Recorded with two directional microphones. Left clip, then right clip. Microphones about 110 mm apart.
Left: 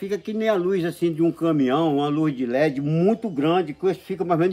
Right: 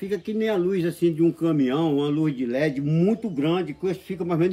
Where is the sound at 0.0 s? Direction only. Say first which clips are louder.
Left 2 dB; 30° left (ahead or behind).